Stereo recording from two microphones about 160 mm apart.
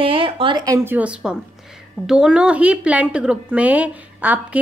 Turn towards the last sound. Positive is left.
turn(degrees=-10)  # may be behind; listen again after turning